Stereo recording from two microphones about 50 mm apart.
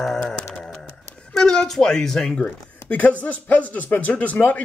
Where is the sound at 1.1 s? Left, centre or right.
Centre.